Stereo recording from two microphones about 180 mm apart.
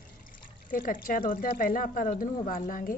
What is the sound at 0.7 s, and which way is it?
Speech, 50° left (ahead or behind).